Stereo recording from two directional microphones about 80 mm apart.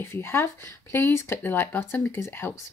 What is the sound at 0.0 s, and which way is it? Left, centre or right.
Speech, left.